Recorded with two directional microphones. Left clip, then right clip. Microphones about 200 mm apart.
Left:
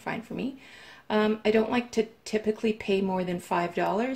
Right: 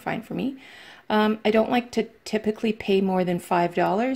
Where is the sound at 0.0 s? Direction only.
35° right (ahead or behind).